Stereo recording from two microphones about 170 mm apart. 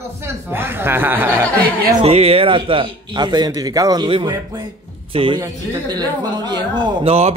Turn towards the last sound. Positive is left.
turn(degrees=-35)  # may be behind; listen again after turning